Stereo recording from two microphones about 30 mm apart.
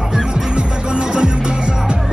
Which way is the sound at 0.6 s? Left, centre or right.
Right.